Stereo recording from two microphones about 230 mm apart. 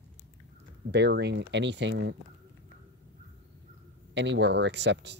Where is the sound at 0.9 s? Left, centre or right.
Right.